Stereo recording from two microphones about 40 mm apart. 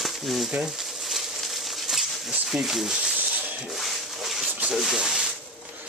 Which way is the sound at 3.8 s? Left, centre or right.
Centre.